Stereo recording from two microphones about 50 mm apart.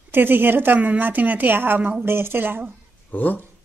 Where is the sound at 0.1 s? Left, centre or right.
Right.